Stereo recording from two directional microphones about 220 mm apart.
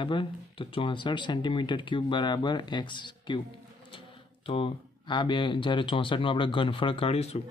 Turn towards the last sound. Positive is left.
turn(degrees=25)  # may be behind; listen again after turning